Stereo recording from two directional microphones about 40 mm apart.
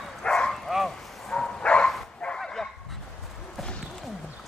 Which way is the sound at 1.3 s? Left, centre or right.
Left.